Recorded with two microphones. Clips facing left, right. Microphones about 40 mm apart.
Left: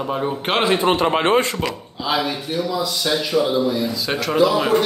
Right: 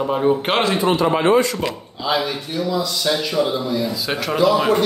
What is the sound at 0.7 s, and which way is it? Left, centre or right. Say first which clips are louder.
Speech: even; left.